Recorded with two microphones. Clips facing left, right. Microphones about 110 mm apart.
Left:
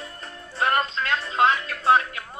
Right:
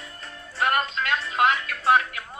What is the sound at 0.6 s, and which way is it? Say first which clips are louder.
Music: left 1 dB; 30° left (ahead or behind).